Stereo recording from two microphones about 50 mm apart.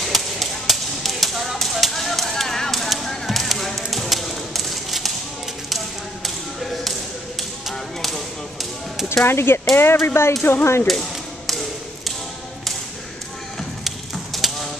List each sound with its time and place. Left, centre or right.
0.1 s chop: centre
7.7 s whip: centre
9.1 s speech: left
10.9 s tap: centre
13.6 s a sound: centre